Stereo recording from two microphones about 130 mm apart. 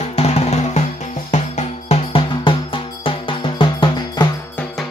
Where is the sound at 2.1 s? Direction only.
40° left (ahead or behind).